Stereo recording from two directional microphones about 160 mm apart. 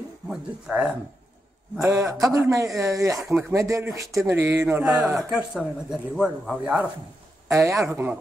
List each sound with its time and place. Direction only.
0.3 s speech: 5° right (ahead or behind)
1.8 s a man's voice: 15° right (ahead or behind)
3.2 s speech: centre (ahead or behind)
3.5 s a man's voice: 20° right (ahead or behind)
4.8 s speech: centre (ahead or behind)
7.4 s speech: 20° right (ahead or behind)